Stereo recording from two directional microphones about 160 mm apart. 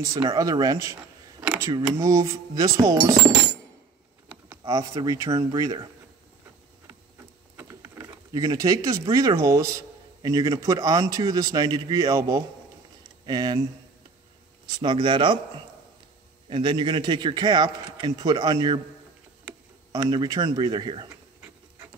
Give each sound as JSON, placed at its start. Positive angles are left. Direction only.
{"t": 0.1, "sound": "a man's voice", "side_deg": -20}
{"t": 1.4, "sound": "a sound", "side_deg": -10}
{"t": 1.7, "sound": "a man's voice", "side_deg": -20}
{"t": 7.5, "sound": "a sound", "side_deg": -20}
{"t": 9.1, "sound": "a man's voice", "side_deg": -20}
{"t": 14.8, "sound": "speech", "side_deg": -30}
{"t": 16.4, "sound": "a man's voice", "side_deg": -30}
{"t": 20.1, "sound": "a man's voice", "side_deg": -25}